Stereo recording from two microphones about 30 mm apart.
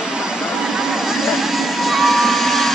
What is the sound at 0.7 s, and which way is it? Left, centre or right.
Vehicle, centre.